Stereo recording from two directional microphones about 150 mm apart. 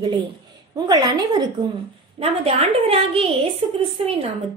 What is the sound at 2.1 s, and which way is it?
A child's voice, 40° right (ahead or behind).